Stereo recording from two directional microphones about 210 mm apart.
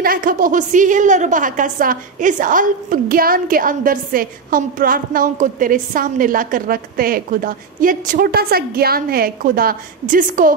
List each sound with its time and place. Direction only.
0.0 s a woman's voice: 40° right (ahead or behind)